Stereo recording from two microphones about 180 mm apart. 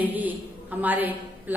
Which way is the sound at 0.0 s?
10° right (ahead or behind).